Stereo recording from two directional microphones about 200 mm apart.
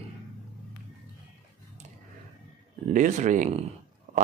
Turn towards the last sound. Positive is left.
turn(degrees=-40)  # may be behind; listen again after turning